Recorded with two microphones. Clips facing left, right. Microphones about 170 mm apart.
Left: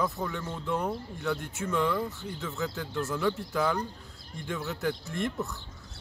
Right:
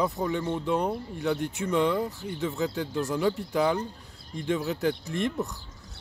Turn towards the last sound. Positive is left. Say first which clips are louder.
# right 4 dB
turn(degrees=-20)  # may be behind; listen again after turning